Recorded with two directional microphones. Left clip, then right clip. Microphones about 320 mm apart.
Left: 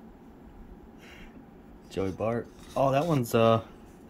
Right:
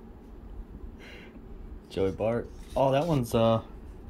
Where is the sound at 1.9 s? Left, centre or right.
Centre.